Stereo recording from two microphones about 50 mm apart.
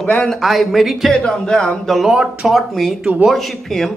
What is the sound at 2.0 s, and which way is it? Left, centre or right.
Speech, centre.